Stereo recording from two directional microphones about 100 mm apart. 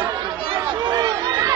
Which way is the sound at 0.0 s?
55° right (ahead or behind).